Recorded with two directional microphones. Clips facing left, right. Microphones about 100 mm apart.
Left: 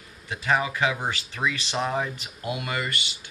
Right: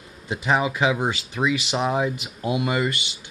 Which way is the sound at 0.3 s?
20° right (ahead or behind).